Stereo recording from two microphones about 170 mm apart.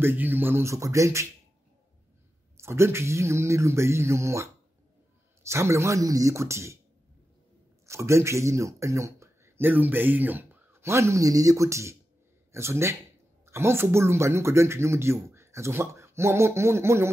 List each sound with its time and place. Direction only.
0.0 s speech: 10° right (ahead or behind)
2.5 s speech: 15° right (ahead or behind)
7.8 s speech: 15° right (ahead or behind)